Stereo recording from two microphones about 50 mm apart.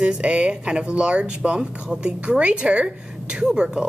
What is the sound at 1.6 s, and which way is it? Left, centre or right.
Speech, centre.